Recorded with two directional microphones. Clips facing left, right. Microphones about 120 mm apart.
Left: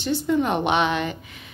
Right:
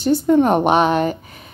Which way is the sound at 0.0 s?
45° right (ahead or behind).